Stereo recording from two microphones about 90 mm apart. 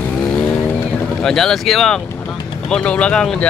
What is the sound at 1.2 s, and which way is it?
Speech, 5° left (ahead or behind).